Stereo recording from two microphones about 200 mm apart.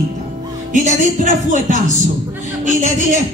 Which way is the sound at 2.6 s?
35° right (ahead or behind).